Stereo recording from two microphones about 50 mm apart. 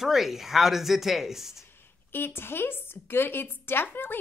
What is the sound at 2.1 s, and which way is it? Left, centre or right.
A woman's voice, left.